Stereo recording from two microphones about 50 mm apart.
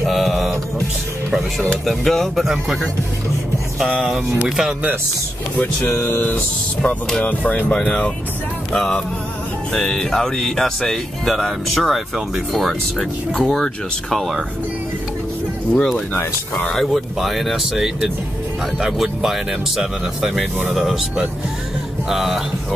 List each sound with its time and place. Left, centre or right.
0.0 s music: centre
1.9 s speech: centre
3.9 s speech: centre
6.0 s speech: left
7.8 s speech: left
8.7 s speech: centre
13.3 s speech: centre
15.7 s speech: centre
22.1 s speech: centre